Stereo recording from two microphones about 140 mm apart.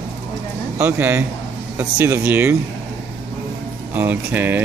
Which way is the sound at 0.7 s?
15° right (ahead or behind).